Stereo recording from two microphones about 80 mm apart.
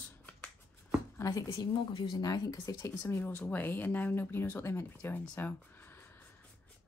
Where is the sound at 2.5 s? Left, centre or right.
Left.